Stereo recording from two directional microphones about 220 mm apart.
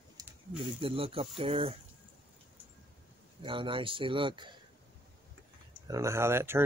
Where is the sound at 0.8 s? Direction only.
25° right (ahead or behind).